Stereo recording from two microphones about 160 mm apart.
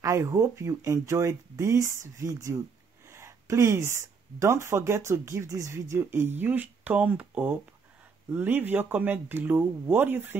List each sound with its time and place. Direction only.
0.0 s speech: 20° right (ahead or behind)